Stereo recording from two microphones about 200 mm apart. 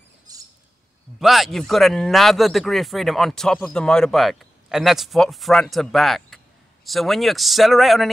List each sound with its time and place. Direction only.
0.3 s bird: 20° right (ahead or behind)
1.2 s speech: centre (ahead or behind)